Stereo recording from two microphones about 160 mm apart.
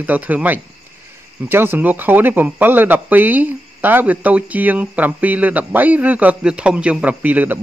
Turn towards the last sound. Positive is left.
turn(degrees=-10)  # may be behind; listen again after turning